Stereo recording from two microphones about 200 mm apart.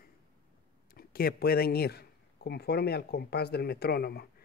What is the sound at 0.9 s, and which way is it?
A man's voice, 50° left (ahead or behind).